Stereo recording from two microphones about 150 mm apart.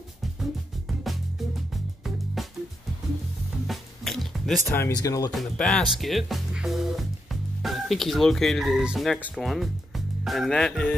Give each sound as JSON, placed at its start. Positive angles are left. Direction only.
{"t": 0.4, "sound": "music", "side_deg": 0}
{"t": 3.6, "sound": "music", "side_deg": 0}
{"t": 4.6, "sound": "speech", "side_deg": 20}
{"t": 5.3, "sound": "speech", "side_deg": 0}